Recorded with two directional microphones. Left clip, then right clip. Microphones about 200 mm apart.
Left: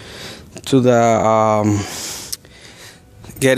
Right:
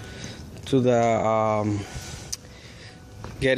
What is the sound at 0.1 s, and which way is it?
Speech, 40° left (ahead or behind).